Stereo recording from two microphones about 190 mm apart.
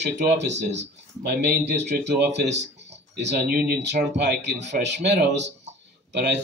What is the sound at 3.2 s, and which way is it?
Speech, 55° right (ahead or behind).